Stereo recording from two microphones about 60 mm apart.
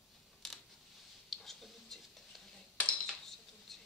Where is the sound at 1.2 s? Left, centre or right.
Centre.